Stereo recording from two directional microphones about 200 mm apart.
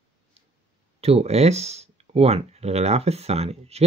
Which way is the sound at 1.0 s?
30° right (ahead or behind).